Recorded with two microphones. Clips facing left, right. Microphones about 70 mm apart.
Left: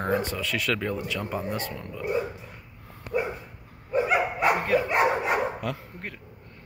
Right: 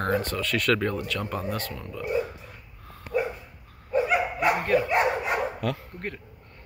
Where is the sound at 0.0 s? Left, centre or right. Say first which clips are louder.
Even; centre.